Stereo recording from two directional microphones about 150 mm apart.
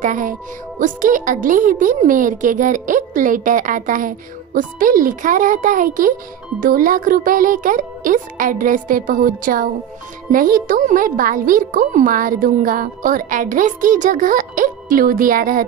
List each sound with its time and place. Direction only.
0.0 s speech: 60° right (ahead or behind)